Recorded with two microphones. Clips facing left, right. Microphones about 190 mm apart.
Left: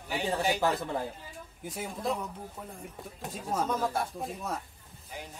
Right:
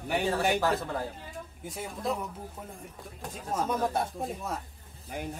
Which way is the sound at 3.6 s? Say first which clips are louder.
Right 3 dB; 15° right (ahead or behind).